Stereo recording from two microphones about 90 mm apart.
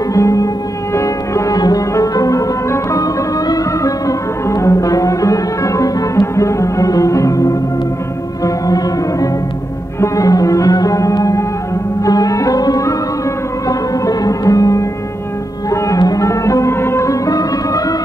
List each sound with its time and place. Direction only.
0.1 s music: 40° left (ahead or behind)
8.6 s music: 40° left (ahead or behind)